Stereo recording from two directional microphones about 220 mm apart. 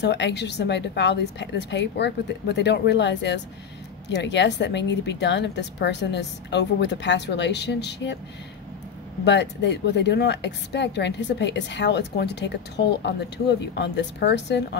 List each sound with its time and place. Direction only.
0.0 s a woman's voice: 50° left (ahead or behind)
9.2 s a woman's voice: 50° left (ahead or behind)